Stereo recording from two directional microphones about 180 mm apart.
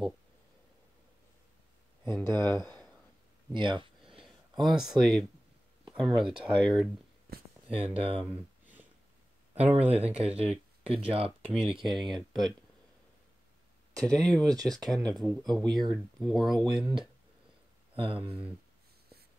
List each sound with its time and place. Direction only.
2.0 s speech: 15° left (ahead or behind)
3.5 s speech: 25° right (ahead or behind)
4.6 s speech: centre (ahead or behind)
7.7 s speech: 30° right (ahead or behind)
9.8 s speech: 35° right (ahead or behind)
11.6 s speech: centre (ahead or behind)
13.9 s speech: 5° left (ahead or behind)
17.9 s speech: 30° right (ahead or behind)